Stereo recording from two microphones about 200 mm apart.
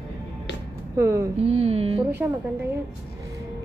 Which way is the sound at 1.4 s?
30° right (ahead or behind).